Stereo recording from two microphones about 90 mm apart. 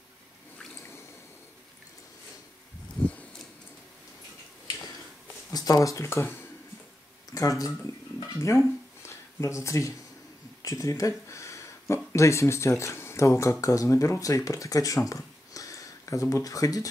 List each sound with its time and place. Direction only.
5.5 s speech: 45° left (ahead or behind); by 6.3 s 30° left (ahead or behind)
7.3 s speech: 40° left (ahead or behind)
8.4 s a sound: 35° left (ahead or behind)
10.6 s speech: 35° left (ahead or behind)